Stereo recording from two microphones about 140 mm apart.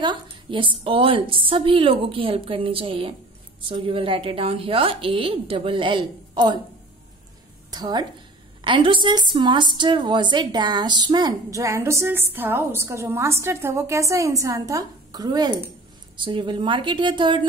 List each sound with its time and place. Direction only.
0.0 s a woman's voice: 35° right (ahead or behind)
7.7 s a woman's voice: 30° right (ahead or behind)